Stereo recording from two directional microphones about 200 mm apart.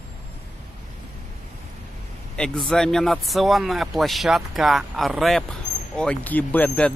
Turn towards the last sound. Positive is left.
turn(degrees=5)  # may be behind; listen again after turning